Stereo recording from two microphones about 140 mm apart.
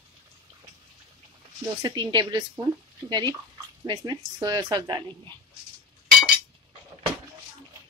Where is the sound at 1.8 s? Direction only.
30° right (ahead or behind).